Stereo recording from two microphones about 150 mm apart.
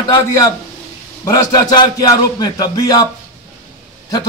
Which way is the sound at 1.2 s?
25° left (ahead or behind).